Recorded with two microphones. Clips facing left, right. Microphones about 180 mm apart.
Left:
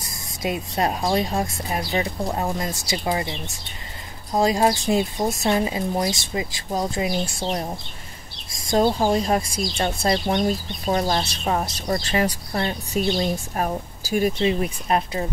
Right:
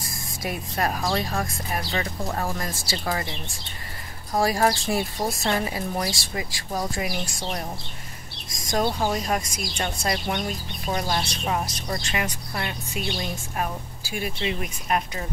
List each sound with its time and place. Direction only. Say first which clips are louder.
0.0 s a woman's voice: left 4 dB; 20° left (ahead or behind)